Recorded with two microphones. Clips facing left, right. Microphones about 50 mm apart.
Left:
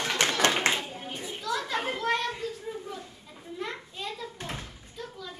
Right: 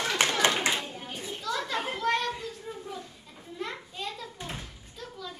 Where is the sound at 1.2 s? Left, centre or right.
Centre.